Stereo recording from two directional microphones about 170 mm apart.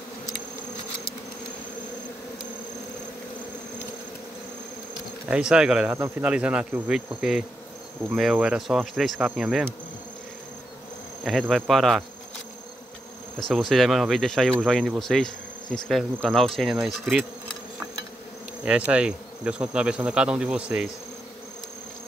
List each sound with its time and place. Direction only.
5.3 s cricket: 5° right (ahead or behind)
5.9 s speech: 15° right (ahead or behind)
6.3 s cricket: 5° right (ahead or behind)
11.2 s cricket: centre (ahead or behind)
13.5 s cricket: centre (ahead or behind)
18.6 s cricket: 5° right (ahead or behind)